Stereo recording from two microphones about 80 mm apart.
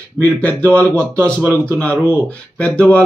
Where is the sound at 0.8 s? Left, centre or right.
Right.